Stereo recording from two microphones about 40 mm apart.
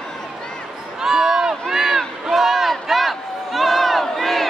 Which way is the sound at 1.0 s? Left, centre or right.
Centre.